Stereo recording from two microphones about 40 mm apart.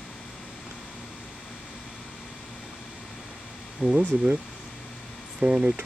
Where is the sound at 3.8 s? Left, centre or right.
Right.